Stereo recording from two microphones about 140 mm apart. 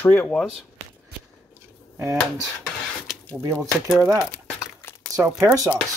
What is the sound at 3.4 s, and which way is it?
Speech, 20° right (ahead or behind).